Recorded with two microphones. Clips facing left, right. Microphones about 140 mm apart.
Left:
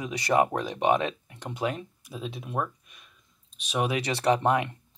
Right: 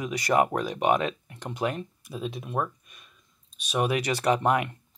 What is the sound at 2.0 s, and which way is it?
Speech, 45° right (ahead or behind).